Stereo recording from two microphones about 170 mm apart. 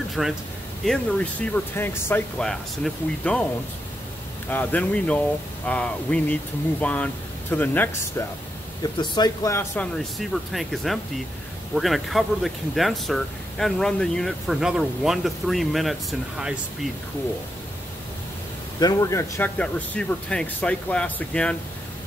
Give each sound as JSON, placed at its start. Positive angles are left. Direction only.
{"t": 0.2, "sound": "speech", "side_deg": 0}
{"t": 4.5, "sound": "a man's voice", "side_deg": 10}
{"t": 8.9, "sound": "speech", "side_deg": 25}
{"t": 9.9, "sound": "speech", "side_deg": 0}
{"t": 18.8, "sound": "a man's voice", "side_deg": 20}
{"t": 19.6, "sound": "speech", "side_deg": 5}